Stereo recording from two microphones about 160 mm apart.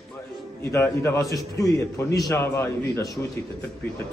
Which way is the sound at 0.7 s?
15° left (ahead or behind).